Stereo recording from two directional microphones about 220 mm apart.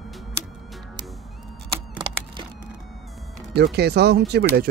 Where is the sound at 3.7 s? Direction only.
50° right (ahead or behind).